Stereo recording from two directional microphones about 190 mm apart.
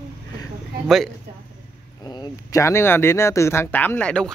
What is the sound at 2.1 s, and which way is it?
Speech, 20° left (ahead or behind).